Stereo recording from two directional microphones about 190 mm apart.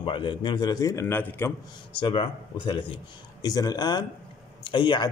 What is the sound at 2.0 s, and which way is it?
A man's voice, 25° left (ahead or behind).